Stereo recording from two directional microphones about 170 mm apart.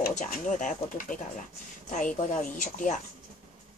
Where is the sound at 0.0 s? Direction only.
50° left (ahead or behind).